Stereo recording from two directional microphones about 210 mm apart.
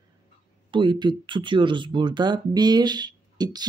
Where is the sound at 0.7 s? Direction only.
20° right (ahead or behind).